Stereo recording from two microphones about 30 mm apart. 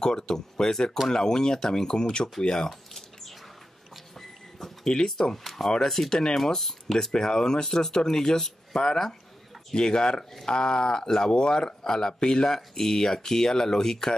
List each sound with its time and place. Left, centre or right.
0.0 s speech: left
2.9 s a sound: centre
5.4 s speech: centre
5.8 s speech: centre
12.5 s speech: centre